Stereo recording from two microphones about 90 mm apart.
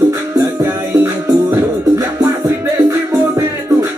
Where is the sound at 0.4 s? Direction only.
40° right (ahead or behind).